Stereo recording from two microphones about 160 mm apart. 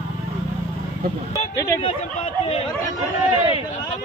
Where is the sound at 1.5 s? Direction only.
20° left (ahead or behind).